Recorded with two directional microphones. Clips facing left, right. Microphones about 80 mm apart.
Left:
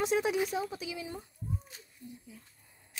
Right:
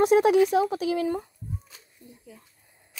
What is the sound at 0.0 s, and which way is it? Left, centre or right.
Speech, right.